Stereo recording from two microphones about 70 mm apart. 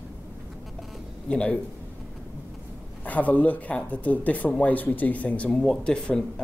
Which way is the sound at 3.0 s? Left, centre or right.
Left.